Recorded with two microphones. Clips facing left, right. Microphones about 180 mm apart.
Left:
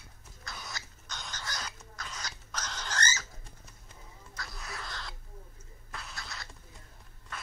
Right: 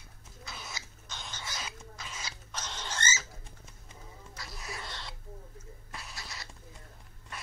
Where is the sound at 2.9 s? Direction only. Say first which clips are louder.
Left 1 dB; 5° right (ahead or behind).